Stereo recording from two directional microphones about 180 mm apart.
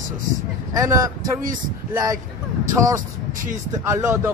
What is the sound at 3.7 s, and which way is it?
Speech, 15° right (ahead or behind).